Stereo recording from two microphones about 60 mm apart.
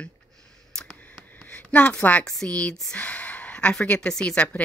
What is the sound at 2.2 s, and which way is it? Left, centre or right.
A woman's voice, centre.